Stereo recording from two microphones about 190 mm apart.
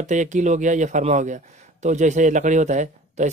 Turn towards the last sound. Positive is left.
turn(degrees=-40)  # may be behind; listen again after turning